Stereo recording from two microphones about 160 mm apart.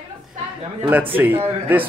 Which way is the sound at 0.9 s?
10° right (ahead or behind).